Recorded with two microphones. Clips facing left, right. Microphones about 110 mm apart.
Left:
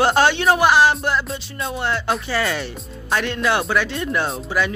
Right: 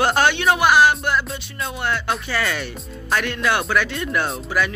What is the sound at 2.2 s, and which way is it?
Speech, 30° left (ahead or behind).